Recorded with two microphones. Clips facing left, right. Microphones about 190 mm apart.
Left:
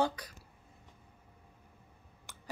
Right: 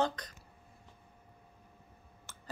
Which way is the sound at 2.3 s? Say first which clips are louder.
Left 1 dB; 15° left (ahead or behind).